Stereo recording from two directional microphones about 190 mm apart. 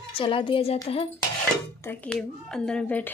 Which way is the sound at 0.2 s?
25° left (ahead or behind).